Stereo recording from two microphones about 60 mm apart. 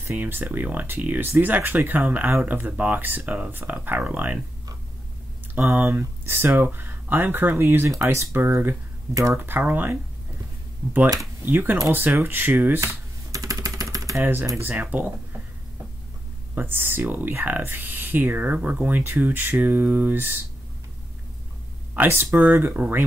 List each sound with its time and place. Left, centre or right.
0.1 s speech: right
5.6 s speech: right
7.5 s speech: right
9.1 s speech: right
9.4 s speech: right
11.4 s speech: right
12.8 s typing: right
14.6 s speech: right
16.5 s speech: right
21.9 s speech: right